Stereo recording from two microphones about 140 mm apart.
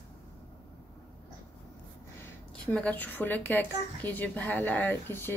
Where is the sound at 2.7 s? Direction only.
10° left (ahead or behind).